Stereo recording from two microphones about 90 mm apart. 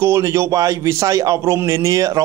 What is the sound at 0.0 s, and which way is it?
A man's voice, 30° right (ahead or behind).